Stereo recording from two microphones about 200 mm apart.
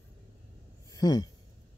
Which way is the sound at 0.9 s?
15° left (ahead or behind).